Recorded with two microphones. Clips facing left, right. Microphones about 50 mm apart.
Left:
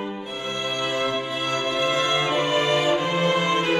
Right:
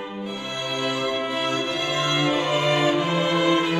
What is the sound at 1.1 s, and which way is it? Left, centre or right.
Music, right.